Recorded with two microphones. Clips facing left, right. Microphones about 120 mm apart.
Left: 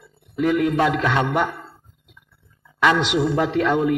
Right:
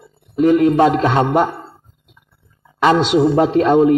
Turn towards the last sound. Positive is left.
turn(degrees=-30)  # may be behind; listen again after turning